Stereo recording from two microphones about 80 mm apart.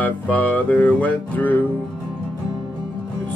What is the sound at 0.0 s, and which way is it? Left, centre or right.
Speech, centre.